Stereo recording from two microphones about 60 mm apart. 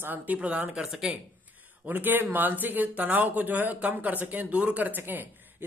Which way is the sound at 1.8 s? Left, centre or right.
Right.